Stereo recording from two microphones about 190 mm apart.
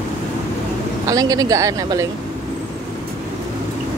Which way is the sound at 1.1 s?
20° right (ahead or behind).